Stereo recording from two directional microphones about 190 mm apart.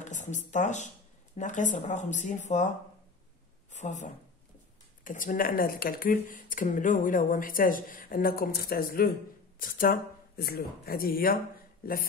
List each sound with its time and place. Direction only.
0.0 s speech: 40° left (ahead or behind)
3.7 s a woman's voice: 40° left (ahead or behind)